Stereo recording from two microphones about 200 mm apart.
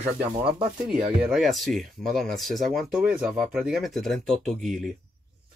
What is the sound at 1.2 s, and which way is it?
Speech, 5° right (ahead or behind).